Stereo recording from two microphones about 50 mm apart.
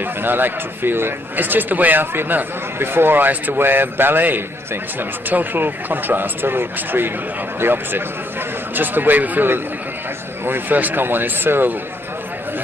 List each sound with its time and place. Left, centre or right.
0.0 s speech: right